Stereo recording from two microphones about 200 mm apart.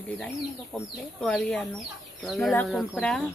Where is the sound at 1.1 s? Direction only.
Centre (ahead or behind).